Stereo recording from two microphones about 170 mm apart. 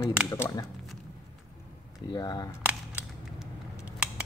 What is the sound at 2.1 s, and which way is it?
Speech, 20° left (ahead or behind).